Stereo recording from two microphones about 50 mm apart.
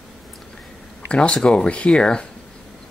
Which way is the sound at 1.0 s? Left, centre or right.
Left.